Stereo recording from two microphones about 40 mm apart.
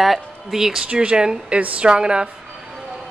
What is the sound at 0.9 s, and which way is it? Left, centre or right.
Speech, right.